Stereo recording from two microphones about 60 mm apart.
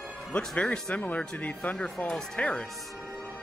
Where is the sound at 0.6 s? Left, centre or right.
Centre.